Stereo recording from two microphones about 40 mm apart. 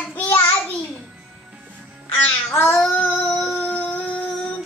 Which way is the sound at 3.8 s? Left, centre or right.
Centre.